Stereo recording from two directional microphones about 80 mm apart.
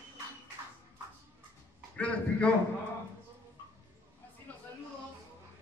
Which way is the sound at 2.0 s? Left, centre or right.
Centre.